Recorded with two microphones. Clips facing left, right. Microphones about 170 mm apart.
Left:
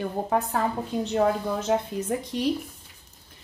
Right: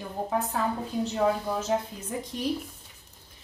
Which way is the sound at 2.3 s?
90° left.